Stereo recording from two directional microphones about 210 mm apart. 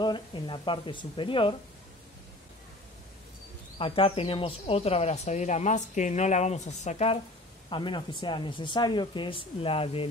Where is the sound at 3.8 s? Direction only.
25° left (ahead or behind).